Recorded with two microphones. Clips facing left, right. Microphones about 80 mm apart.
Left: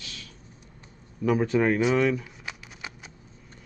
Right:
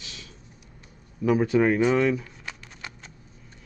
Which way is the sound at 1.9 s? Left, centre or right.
Centre.